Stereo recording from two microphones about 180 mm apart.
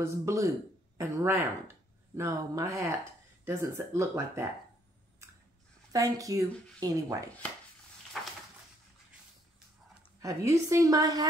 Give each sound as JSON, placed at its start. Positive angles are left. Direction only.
{"t": 0.0, "sound": "speech", "side_deg": -15}
{"t": 5.9, "sound": "speech", "side_deg": -20}
{"t": 10.2, "sound": "speech", "side_deg": -15}